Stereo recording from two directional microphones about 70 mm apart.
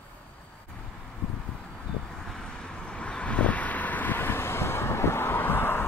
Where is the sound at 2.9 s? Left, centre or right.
Centre.